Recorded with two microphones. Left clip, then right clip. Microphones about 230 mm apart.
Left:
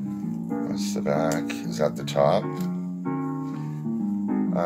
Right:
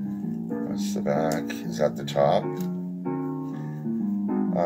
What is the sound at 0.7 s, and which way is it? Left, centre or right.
Speech, centre.